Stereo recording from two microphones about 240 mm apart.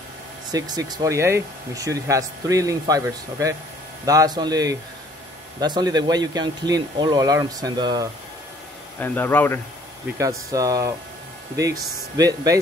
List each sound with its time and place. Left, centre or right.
0.5 s speech: centre
9.0 s speech: centre
10.1 s speech: centre